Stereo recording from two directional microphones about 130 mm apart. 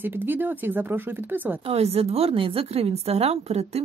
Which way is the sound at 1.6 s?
50° right (ahead or behind).